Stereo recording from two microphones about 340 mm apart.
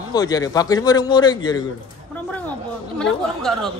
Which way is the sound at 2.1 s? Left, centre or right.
Centre.